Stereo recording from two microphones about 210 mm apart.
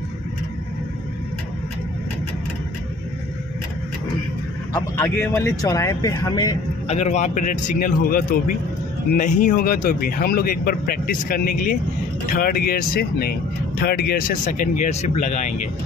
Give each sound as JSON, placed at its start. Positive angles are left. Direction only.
{"t": 4.7, "sound": "speech", "side_deg": 10}
{"t": 6.9, "sound": "a man's voice", "side_deg": 35}